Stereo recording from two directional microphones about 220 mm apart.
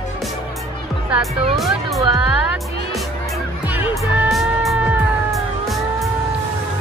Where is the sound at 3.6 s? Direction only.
10° right (ahead or behind).